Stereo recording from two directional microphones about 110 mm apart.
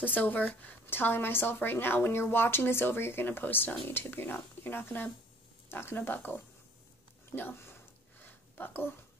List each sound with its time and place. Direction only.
0.0 s speech: 15° left (ahead or behind)